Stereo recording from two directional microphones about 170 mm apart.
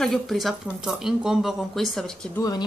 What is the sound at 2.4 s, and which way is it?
Speech, 20° left (ahead or behind).